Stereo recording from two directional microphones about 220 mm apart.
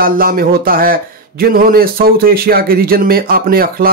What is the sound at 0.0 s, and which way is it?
Speech, 40° right (ahead or behind).